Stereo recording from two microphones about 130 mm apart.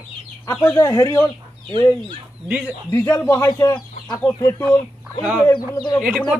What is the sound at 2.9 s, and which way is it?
Speech, 20° left (ahead or behind).